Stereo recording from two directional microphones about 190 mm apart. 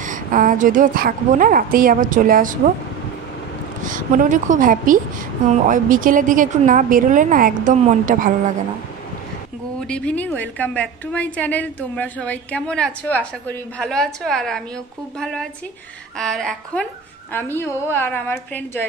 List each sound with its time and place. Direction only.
0.0 s a woman's voice: 45° right (ahead or behind)
3.8 s a woman's voice: 45° right (ahead or behind)
9.8 s a woman's voice: 5° left (ahead or behind)